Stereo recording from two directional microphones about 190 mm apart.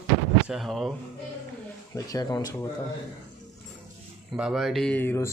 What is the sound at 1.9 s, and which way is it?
Speech, 20° left (ahead or behind).